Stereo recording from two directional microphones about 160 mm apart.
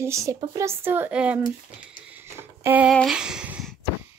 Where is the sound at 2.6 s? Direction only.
15° right (ahead or behind).